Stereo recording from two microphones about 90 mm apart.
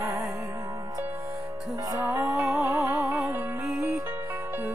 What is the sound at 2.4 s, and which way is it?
Music, 20° right (ahead or behind).